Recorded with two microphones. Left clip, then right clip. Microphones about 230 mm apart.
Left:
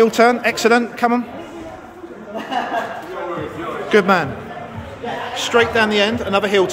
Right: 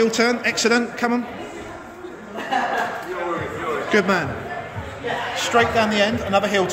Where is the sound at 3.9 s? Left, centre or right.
Centre.